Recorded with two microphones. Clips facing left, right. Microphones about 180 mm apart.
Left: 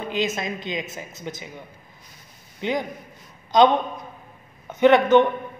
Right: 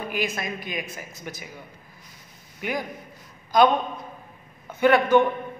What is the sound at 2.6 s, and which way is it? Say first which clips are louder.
A man's voice: left 4 dB; 20° left (ahead or behind).